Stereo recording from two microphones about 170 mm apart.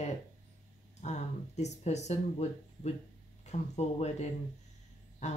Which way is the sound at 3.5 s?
40° left (ahead or behind).